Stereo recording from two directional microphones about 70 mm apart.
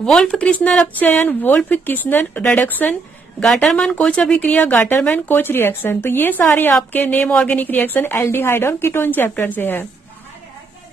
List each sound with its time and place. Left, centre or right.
0.0 s speech: centre
0.5 s a woman's voice: centre
3.4 s a woman's voice: centre; by 9.8 s left